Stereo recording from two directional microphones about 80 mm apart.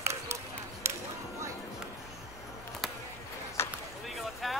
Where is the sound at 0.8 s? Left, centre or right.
Right.